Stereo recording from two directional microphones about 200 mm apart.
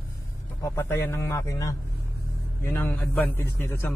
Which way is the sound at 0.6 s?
10° left (ahead or behind).